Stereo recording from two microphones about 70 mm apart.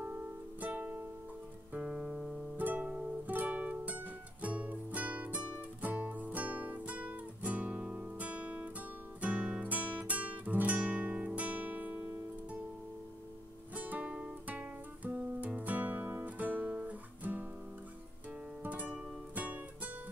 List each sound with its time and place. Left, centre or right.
0.0 s music: right
2.5 s music: right
7.8 s guitar: centre
9.2 s music: centre
13.7 s music: right
15.4 s music: right
18.6 s music: right